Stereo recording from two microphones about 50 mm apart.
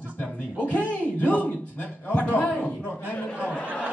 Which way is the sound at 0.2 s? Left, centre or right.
Left.